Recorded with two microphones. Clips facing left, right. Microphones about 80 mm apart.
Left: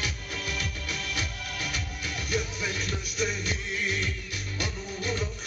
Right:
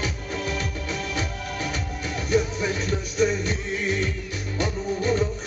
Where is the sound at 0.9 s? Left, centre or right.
Right.